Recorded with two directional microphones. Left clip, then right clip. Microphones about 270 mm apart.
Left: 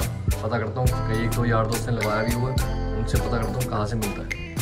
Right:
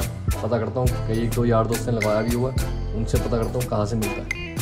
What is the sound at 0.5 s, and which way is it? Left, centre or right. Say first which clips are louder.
A man's voice: right 3 dB; right.